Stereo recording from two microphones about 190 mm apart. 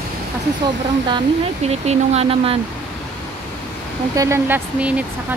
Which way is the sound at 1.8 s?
35° right (ahead or behind).